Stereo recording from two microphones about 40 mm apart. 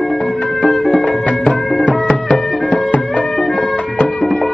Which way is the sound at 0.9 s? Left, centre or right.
Left.